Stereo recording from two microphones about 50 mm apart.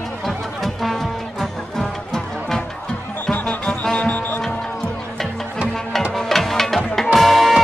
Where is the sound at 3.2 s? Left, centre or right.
Left.